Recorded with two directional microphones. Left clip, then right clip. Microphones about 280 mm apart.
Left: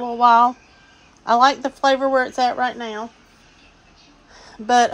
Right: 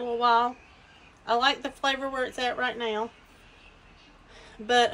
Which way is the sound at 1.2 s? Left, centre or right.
Centre.